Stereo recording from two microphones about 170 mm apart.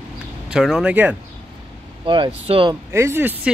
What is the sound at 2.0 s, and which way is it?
Speech, 30° right (ahead or behind).